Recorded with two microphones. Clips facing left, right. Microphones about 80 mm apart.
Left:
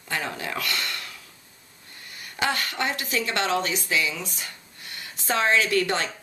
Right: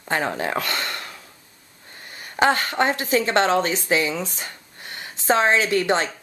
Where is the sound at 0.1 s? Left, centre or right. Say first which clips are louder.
Right 7 dB; right.